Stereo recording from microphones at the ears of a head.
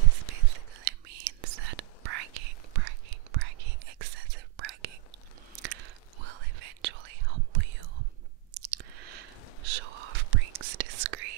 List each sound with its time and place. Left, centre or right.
0.3 s whispering: right